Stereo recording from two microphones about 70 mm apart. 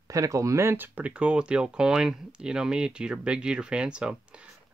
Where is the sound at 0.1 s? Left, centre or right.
Right.